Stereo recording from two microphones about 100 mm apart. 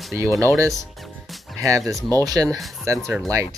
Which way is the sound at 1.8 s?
Centre (ahead or behind).